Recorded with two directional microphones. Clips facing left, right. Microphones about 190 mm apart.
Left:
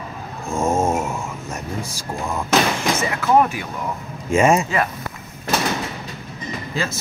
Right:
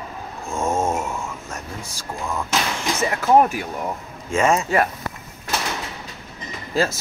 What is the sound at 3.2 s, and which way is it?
Speech, 40° right (ahead or behind).